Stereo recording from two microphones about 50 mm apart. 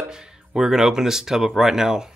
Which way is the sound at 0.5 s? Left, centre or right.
Centre.